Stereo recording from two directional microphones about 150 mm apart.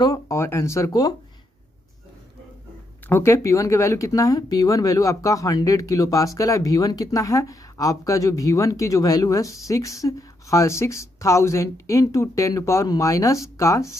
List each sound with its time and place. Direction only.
0.0 s speech: 20° left (ahead or behind)
3.1 s speech: 20° left (ahead or behind)